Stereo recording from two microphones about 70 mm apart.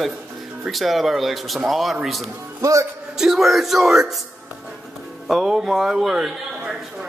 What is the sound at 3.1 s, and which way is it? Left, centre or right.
A man's voice, centre.